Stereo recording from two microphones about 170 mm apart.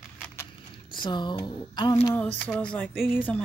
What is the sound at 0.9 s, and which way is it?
Speech, 25° left (ahead or behind).